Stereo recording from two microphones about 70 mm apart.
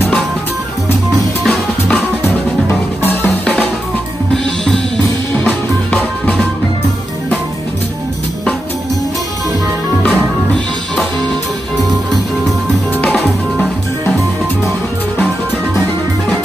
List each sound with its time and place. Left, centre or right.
3.0 s drum kit: left
5.4 s music: centre
10.0 s music: centre